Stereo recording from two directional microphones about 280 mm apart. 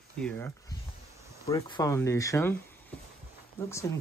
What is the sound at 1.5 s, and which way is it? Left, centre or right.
Speech, centre.